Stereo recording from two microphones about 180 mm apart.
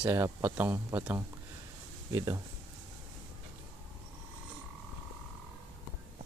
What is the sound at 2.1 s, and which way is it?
Speech, 20° right (ahead or behind).